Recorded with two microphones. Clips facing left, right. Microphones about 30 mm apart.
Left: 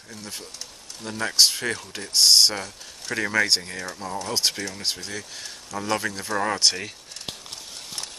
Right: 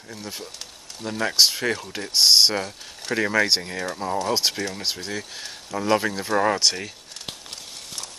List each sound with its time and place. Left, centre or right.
0.1 s speech: centre
3.8 s speech: right
4.3 s speech: centre
6.5 s speech: centre